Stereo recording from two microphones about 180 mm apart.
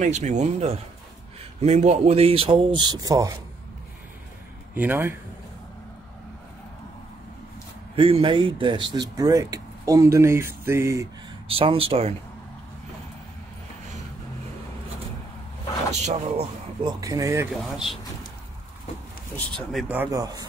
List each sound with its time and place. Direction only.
0.0 s speech: 40° right (ahead or behind); by 3.3 s 20° right (ahead or behind)
4.7 s speech: 10° right (ahead or behind)
7.9 s speech: 30° right (ahead or behind); by 11.1 s 15° right (ahead or behind)
11.5 s speech: 30° right (ahead or behind)
15.9 s speech: 40° right (ahead or behind)
16.8 s speech: 20° right (ahead or behind)
17.6 s speech: centre (ahead or behind)
19.3 s speech: 5° left (ahead or behind); by 20.4 s 20° right (ahead or behind)